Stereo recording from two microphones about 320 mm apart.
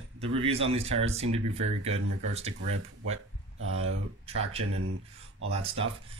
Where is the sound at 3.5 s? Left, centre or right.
Right.